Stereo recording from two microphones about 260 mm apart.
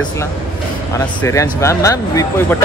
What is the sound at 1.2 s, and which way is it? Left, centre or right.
Speech, centre.